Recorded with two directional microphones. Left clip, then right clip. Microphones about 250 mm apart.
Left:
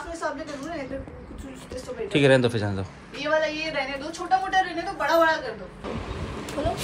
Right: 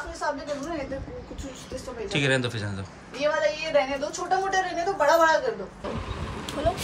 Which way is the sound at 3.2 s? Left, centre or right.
Right.